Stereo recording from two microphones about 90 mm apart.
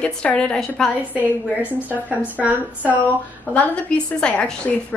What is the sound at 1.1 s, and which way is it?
A woman's voice, 15° right (ahead or behind).